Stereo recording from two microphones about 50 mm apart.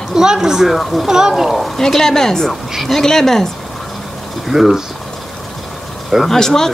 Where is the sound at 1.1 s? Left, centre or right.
Centre.